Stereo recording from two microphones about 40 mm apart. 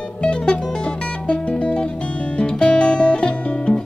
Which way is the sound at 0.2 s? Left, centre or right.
Left.